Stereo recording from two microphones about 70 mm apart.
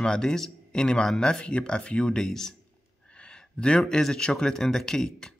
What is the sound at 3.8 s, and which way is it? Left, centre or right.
Speech, centre.